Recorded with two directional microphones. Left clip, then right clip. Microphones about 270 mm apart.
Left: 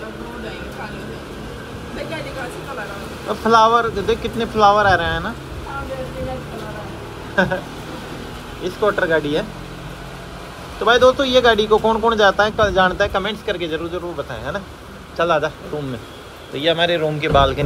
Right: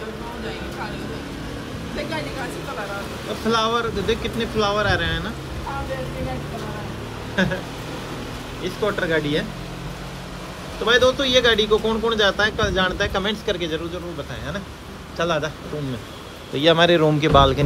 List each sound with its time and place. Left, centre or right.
3.4 s a man's voice: centre
8.6 s a man's voice: centre
10.8 s a man's voice: centre
15.1 s a man's voice: centre
16.6 s a man's voice: centre